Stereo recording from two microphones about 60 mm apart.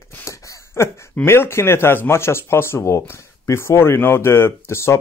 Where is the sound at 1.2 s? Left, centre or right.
Left.